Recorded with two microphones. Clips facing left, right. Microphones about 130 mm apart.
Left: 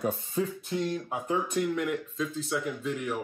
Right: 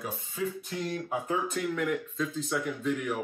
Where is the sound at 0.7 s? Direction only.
Centre (ahead or behind).